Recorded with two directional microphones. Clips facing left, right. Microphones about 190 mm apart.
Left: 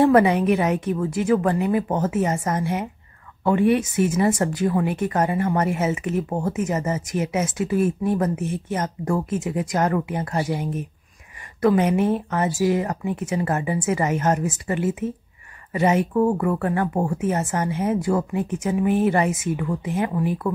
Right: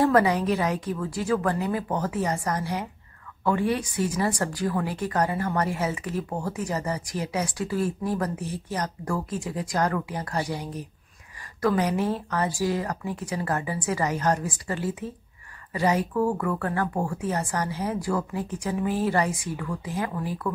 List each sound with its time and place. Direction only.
0.0 s speech: 25° left (ahead or behind)